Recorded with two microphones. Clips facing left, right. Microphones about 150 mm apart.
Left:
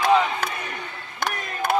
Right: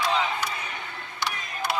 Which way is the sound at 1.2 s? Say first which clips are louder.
Left 5 dB; 50° left (ahead or behind).